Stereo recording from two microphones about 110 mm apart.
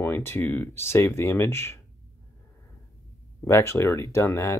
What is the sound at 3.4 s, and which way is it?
Speech, 25° left (ahead or behind).